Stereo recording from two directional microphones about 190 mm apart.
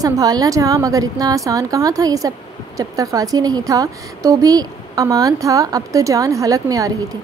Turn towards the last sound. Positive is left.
turn(degrees=-20)  # may be behind; listen again after turning